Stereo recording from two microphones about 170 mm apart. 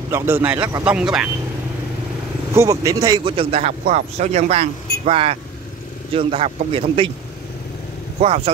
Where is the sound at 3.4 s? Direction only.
35° right (ahead or behind).